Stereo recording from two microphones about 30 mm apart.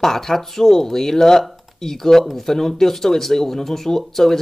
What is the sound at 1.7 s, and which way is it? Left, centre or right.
Speech, centre.